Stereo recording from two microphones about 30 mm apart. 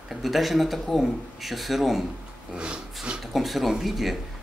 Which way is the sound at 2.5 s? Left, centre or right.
Right.